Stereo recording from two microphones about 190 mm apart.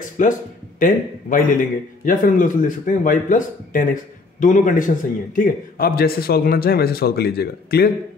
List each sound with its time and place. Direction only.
0.2 s a man's voice: 40° left (ahead or behind)